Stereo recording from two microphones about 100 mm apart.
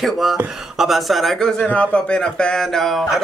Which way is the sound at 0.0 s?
Centre (ahead or behind).